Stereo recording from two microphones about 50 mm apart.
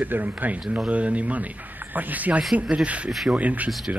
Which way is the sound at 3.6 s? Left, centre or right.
Centre.